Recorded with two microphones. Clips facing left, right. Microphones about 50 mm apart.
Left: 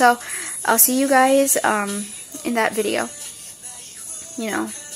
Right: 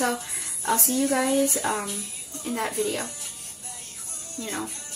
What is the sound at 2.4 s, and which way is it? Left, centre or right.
Speech, left.